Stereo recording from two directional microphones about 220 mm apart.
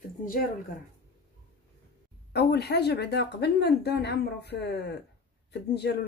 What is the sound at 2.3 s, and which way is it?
Speech, 45° left (ahead or behind).